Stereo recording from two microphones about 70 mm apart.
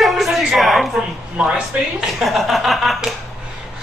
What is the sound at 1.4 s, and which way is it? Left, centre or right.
Speech, centre.